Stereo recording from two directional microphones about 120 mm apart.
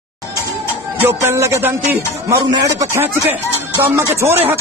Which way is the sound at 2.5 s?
30° right (ahead or behind).